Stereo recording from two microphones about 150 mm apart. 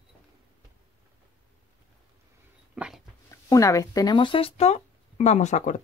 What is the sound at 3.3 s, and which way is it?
Speech, 20° left (ahead or behind).